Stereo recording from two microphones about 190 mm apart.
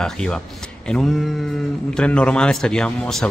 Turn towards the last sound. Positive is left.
turn(degrees=5)  # may be behind; listen again after turning